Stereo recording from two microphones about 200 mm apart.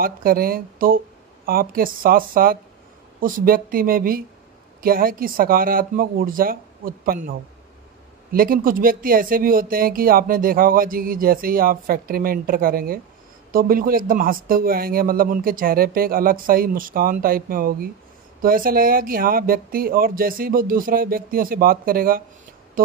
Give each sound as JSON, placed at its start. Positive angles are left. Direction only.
{"t": 0.0, "sound": "speech", "side_deg": -45}